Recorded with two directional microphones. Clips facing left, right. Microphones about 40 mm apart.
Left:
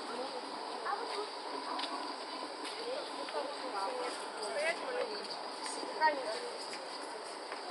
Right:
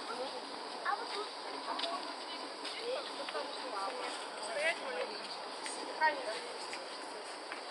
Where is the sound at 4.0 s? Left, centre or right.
Right.